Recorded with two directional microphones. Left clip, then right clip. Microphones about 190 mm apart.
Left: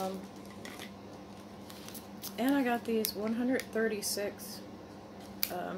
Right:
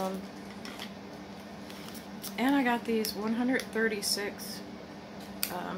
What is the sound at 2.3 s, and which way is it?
Speech, 5° left (ahead or behind).